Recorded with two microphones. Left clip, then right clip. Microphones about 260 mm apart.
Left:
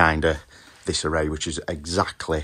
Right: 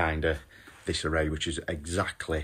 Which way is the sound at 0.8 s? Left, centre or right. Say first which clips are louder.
Left 5 dB; centre.